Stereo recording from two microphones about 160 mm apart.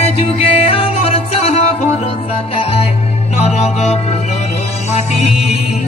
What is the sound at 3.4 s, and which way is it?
Music, 40° left (ahead or behind).